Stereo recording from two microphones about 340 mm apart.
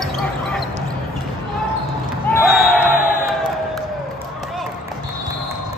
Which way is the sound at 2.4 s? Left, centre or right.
Centre.